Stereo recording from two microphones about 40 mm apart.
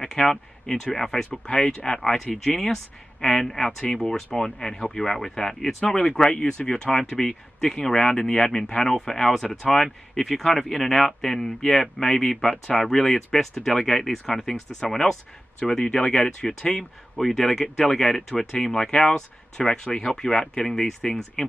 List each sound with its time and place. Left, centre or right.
0.0 s speech: centre
2.3 s speech: centre
17.2 s speech: centre